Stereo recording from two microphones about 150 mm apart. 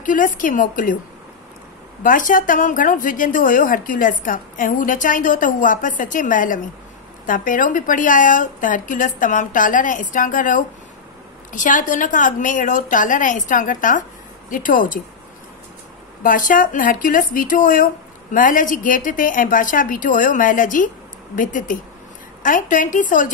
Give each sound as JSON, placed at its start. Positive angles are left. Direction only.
{"t": 0.0, "sound": "a woman's voice", "side_deg": 60}
{"t": 2.0, "sound": "a woman's voice", "side_deg": 65}
{"t": 16.2, "sound": "a woman's voice", "side_deg": 65}